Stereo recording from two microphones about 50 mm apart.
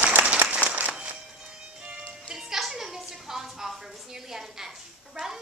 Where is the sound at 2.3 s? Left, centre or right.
Centre.